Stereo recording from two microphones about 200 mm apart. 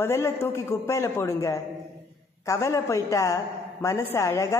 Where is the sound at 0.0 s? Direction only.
15° left (ahead or behind).